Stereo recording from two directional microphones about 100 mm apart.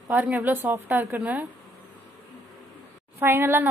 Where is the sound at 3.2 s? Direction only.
25° right (ahead or behind).